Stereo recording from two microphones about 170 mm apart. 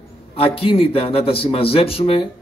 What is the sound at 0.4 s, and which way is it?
A man's voice, 35° left (ahead or behind).